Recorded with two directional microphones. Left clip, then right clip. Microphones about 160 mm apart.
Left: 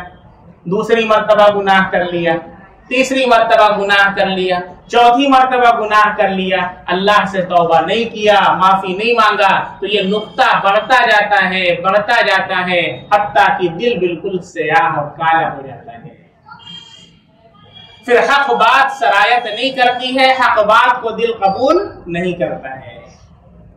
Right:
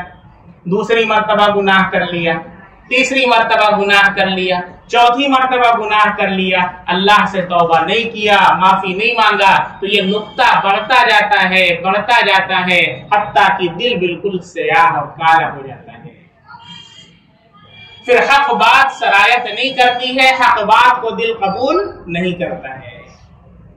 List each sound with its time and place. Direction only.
0.7 s a man's voice: 35° left (ahead or behind)
18.0 s a man's voice: 30° left (ahead or behind)